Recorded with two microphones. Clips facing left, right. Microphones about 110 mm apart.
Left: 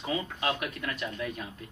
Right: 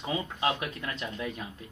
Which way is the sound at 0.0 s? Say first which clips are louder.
Right 1 dB; 20° right (ahead or behind).